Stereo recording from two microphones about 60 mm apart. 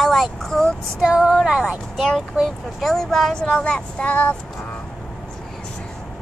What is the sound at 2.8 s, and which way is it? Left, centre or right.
Speech, centre.